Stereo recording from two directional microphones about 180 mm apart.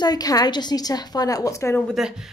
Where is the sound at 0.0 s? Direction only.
20° left (ahead or behind).